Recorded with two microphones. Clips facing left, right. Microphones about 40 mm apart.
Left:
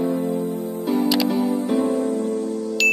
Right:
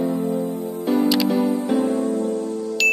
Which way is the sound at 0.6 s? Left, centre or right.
Right.